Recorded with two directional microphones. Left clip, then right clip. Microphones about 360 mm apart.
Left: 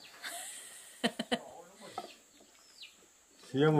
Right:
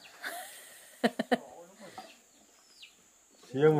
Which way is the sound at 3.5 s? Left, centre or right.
Centre.